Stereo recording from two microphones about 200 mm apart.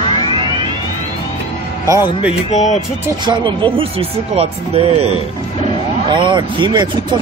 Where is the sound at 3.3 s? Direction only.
25° right (ahead or behind).